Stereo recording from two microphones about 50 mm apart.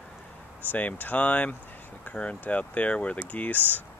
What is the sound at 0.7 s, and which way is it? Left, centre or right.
Speech, left.